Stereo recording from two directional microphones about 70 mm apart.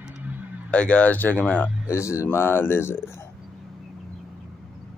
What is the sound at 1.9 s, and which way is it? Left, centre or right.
Speech, left.